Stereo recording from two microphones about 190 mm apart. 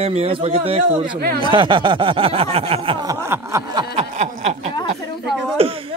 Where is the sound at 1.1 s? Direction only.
55° right (ahead or behind).